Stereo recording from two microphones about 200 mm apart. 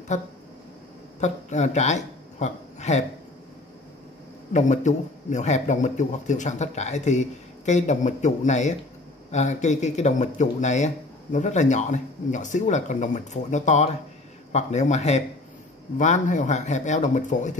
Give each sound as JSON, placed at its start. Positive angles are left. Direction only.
{"t": 1.2, "sound": "speech", "side_deg": 35}
{"t": 4.5, "sound": "a man's voice", "side_deg": 35}